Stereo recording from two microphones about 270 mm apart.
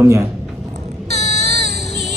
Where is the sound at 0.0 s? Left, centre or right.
Centre.